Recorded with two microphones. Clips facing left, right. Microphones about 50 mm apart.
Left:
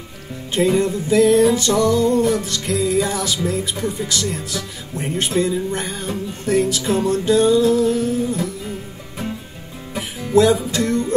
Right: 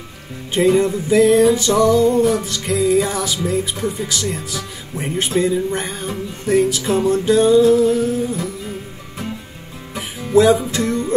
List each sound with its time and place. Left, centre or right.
0.6 s music: centre
3.4 s speech: centre
9.9 s music: centre